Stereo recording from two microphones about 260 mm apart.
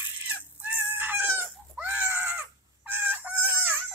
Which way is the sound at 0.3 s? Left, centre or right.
Centre.